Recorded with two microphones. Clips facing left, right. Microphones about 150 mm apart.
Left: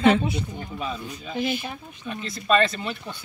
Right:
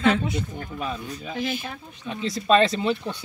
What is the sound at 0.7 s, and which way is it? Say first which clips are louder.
Speech: right 1 dB; 5° right (ahead or behind).